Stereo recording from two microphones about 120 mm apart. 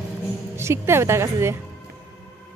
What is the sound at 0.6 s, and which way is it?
Speech, 20° right (ahead or behind).